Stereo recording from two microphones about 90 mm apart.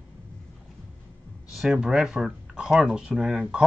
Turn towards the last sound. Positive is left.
turn(degrees=-5)  # may be behind; listen again after turning